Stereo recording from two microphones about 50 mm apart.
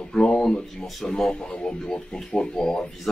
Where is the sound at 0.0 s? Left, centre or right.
Centre.